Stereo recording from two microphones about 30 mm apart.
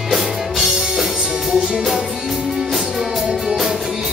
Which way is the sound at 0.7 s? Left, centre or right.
Centre.